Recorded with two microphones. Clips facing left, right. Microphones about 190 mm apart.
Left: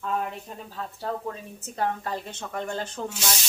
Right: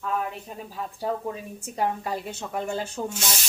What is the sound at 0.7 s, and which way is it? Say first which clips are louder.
A woman's voice: right 3 dB; 15° right (ahead or behind).